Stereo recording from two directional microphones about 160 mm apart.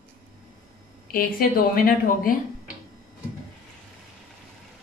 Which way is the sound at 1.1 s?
65° left (ahead or behind).